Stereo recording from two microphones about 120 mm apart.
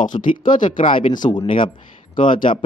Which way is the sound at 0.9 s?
40° left (ahead or behind).